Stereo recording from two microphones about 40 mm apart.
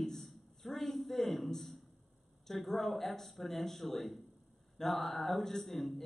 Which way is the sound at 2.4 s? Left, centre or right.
Centre.